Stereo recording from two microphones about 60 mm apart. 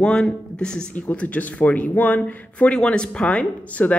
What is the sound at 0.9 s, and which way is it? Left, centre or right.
Speech, left.